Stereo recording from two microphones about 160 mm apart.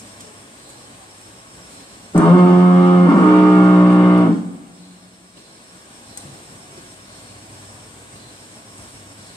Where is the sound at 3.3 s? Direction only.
15° left (ahead or behind).